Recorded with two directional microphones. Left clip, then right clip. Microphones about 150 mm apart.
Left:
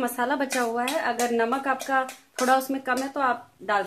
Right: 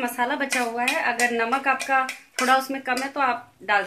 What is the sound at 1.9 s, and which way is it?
Speech, 40° left (ahead or behind).